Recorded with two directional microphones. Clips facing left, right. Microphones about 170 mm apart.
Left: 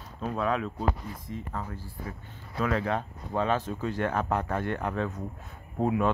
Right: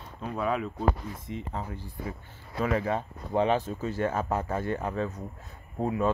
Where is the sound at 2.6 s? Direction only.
10° right (ahead or behind).